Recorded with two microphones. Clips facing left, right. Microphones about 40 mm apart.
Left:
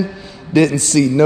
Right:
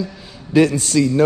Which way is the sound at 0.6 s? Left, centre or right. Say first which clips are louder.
Left 1 dB; left.